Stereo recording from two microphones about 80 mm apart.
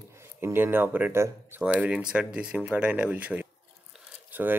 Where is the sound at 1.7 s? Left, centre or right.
Centre.